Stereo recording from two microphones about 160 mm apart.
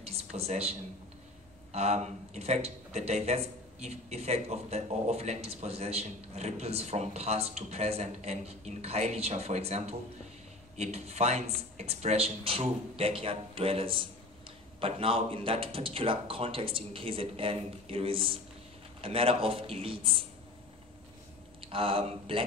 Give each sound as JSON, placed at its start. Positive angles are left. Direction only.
{"t": 0.0, "sound": "speech", "side_deg": -40}
{"t": 21.6, "sound": "speech", "side_deg": -35}